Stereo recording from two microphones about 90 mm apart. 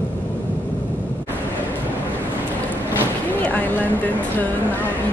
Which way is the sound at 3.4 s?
15° left (ahead or behind).